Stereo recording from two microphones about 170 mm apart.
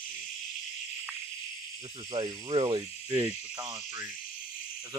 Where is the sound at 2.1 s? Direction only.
25° right (ahead or behind).